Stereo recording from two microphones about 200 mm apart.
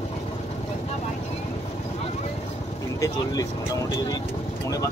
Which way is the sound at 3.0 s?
15° left (ahead or behind).